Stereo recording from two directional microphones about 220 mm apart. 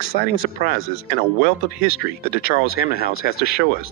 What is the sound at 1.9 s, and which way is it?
Speech, 45° left (ahead or behind).